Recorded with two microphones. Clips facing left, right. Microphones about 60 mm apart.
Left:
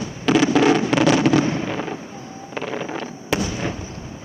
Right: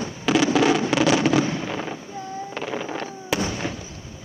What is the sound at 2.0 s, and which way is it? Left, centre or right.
Fireworks, left.